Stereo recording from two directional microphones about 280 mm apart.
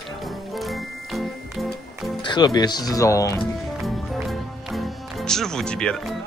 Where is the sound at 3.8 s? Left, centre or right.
Centre.